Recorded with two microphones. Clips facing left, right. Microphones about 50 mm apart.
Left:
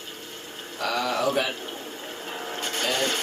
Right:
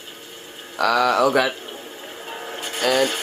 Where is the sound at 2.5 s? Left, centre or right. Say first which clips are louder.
Right 1 dB; centre.